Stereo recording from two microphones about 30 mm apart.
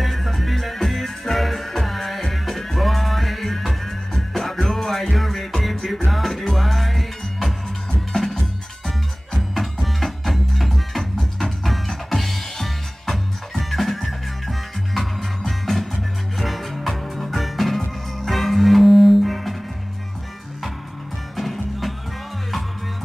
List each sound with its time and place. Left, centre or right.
0.0 s music: centre
8.1 s music: left
8.8 s music: centre
11.1 s music: centre
21.4 s music: centre